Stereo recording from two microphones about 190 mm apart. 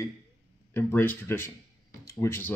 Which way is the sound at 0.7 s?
10° left (ahead or behind).